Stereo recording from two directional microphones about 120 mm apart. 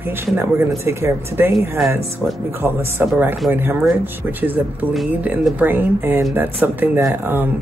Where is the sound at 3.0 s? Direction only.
15° right (ahead or behind).